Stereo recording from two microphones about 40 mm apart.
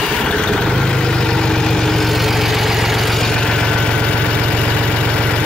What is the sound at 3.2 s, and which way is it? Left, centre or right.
Vehicle, centre.